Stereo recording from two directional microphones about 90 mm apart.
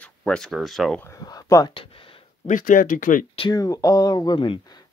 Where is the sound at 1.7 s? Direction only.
80° left.